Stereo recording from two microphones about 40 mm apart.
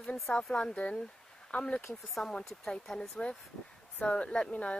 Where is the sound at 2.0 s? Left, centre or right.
Centre.